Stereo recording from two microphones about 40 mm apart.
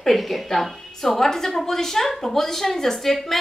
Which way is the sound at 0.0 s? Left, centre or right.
Centre.